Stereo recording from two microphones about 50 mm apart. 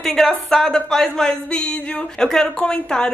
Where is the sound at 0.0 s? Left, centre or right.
Centre.